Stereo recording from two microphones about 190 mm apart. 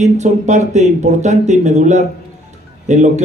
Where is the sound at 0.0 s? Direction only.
40° right (ahead or behind).